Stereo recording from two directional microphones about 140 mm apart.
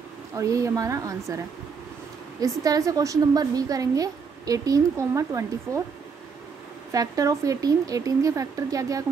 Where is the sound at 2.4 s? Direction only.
25° right (ahead or behind).